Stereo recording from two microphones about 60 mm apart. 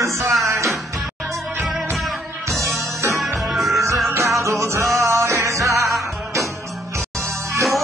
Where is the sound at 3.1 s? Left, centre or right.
Centre.